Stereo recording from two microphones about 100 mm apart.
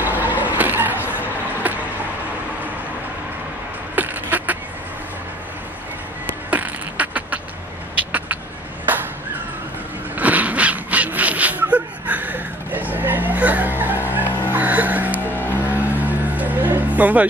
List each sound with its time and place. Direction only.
0.0 s a sound: 20° right (ahead or behind)
1.6 s vehicle: 15° right (ahead or behind)
3.9 s a sound: 15° right (ahead or behind)
6.5 s beatboxing: 15° right (ahead or behind)
10.1 s a sound: 15° right (ahead or behind)
14.2 s music: 20° left (ahead or behind)
14.5 s music: 15° right (ahead or behind)
15.3 s music: 20° left (ahead or behind)
15.8 s music: 15° right (ahead or behind)